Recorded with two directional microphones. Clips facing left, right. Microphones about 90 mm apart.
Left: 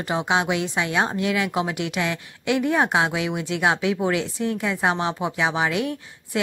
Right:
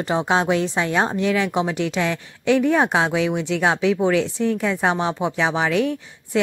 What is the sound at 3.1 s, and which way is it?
Speech, 15° left (ahead or behind).